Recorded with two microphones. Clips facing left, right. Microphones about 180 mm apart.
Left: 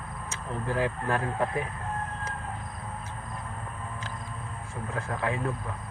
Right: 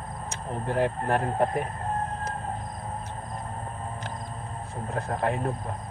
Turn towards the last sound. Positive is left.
turn(degrees=-50)  # may be behind; listen again after turning